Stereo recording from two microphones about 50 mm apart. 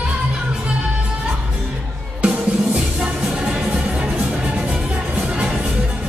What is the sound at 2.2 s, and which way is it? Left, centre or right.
Music, right.